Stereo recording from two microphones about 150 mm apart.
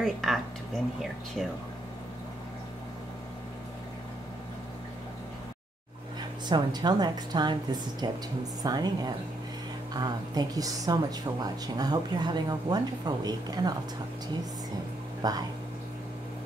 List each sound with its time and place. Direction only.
0.0 s speech: centre (ahead or behind)
6.5 s speech: 30° right (ahead or behind)
15.2 s speech: 25° right (ahead or behind)